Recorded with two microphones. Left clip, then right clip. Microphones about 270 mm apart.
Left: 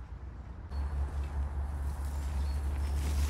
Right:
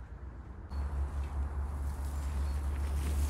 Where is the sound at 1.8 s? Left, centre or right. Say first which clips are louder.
Left 1 dB; centre.